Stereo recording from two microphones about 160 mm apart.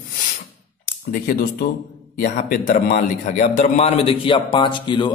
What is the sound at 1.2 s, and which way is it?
Speech, 65° left (ahead or behind).